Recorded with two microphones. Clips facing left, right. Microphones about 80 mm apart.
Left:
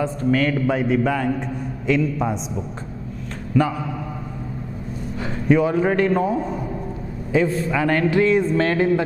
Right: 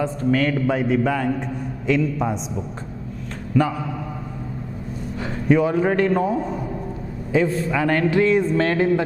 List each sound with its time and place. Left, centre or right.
0.0 s a man's voice: centre
3.5 s a man's voice: centre
5.5 s a man's voice: centre